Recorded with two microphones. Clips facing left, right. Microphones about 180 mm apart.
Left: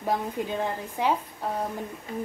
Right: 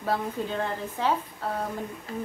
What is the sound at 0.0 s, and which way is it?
A woman's voice, 15° left (ahead or behind).